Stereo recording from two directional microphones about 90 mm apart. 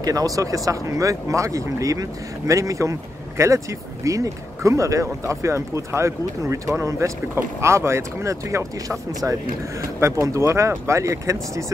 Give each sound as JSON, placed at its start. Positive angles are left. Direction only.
{"t": 0.0, "sound": "speech", "side_deg": -45}